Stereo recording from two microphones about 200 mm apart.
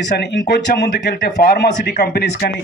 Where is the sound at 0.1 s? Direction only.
60° left (ahead or behind).